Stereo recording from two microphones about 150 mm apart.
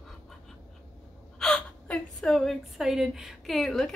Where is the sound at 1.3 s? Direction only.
5° left (ahead or behind).